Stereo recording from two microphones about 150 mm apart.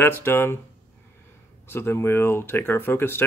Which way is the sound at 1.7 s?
15° left (ahead or behind).